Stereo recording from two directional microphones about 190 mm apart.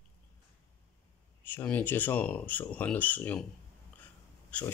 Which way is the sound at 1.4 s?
10° left (ahead or behind).